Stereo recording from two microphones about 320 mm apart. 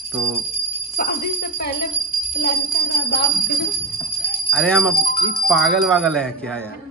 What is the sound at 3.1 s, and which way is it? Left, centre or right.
Speech, left.